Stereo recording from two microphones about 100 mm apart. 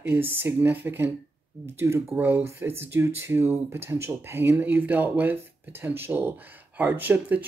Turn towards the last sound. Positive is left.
turn(degrees=-20)  # may be behind; listen again after turning